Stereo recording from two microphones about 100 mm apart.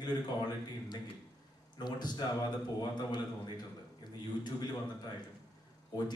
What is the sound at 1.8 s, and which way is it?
A man's voice, 45° left (ahead or behind).